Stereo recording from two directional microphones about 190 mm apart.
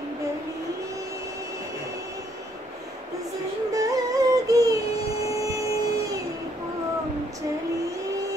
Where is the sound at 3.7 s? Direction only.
15° right (ahead or behind).